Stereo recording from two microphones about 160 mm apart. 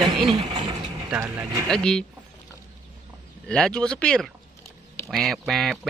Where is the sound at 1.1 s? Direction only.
20° right (ahead or behind).